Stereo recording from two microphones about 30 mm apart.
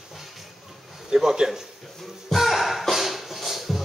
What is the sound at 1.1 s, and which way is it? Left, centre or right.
Speech, centre.